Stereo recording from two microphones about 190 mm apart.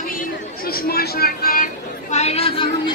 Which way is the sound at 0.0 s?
50° left (ahead or behind).